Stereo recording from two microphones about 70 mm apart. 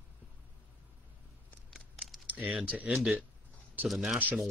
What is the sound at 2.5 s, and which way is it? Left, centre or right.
Speech, centre.